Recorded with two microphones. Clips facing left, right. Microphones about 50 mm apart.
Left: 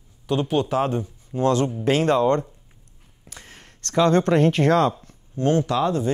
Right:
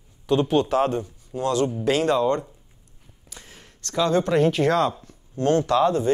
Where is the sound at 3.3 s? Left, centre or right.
Left.